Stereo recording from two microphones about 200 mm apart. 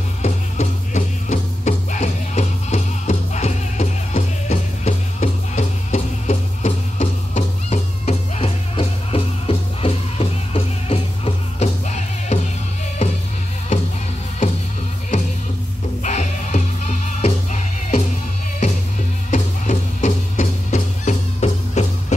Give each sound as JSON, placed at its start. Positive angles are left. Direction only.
{"t": 0.2, "sound": "music", "side_deg": 35}
{"t": 16.0, "sound": "music", "side_deg": 35}
{"t": 19.3, "sound": "music", "side_deg": 40}